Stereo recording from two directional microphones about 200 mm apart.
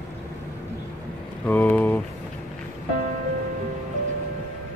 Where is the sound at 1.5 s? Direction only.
10° left (ahead or behind).